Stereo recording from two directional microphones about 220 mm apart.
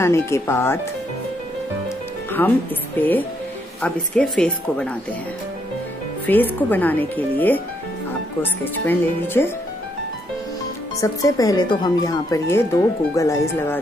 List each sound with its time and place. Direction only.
0.0 s speech: 10° left (ahead or behind)
2.4 s speech: 10° left (ahead or behind)
6.2 s speech: 10° left (ahead or behind)
11.0 s speech: 15° left (ahead or behind)